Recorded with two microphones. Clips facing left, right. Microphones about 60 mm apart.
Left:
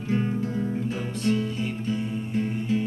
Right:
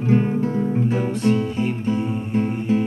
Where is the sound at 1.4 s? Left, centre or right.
Right.